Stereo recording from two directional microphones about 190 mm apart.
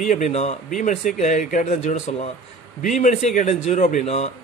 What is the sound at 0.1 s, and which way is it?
Speech, 40° left (ahead or behind).